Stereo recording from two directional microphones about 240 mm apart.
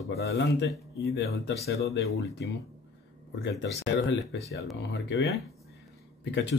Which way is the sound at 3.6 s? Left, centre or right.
Left.